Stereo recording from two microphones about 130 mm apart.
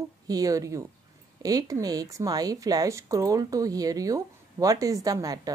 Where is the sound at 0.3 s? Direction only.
25° right (ahead or behind).